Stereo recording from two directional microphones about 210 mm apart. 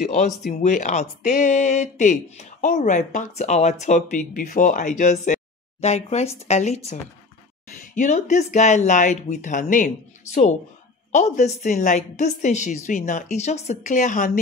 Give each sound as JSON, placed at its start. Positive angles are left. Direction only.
{"t": 0.0, "sound": "speech", "side_deg": 35}
{"t": 11.1, "sound": "speech", "side_deg": 35}